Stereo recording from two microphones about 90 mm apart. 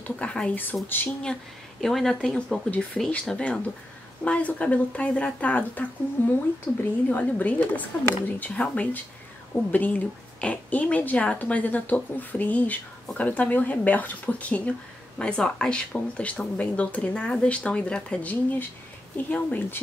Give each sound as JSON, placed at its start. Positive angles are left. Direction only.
{"t": 0.0, "sound": "a woman's voice", "side_deg": 10}
{"t": 1.2, "sound": "a woman's voice", "side_deg": 5}